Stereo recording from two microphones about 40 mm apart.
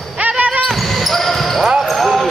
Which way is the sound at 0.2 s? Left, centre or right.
Right.